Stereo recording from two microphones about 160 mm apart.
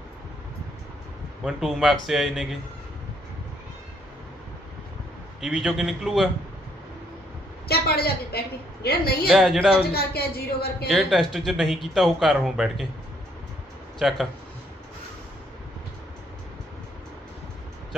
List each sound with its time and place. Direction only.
1.4 s speech: centre (ahead or behind)
5.4 s speech: centre (ahead or behind)
7.6 s a woman's voice: 75° left (ahead or behind)
9.3 s speech: centre (ahead or behind)
9.9 s a woman's voice: 75° left (ahead or behind)
10.9 s speech: centre (ahead or behind)
13.9 s speech: centre (ahead or behind)